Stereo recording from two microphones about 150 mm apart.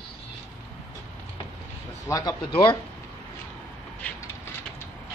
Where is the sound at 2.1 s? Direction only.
25° left (ahead or behind).